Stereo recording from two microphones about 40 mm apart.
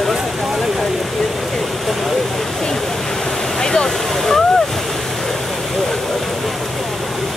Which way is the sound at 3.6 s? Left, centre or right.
Centre.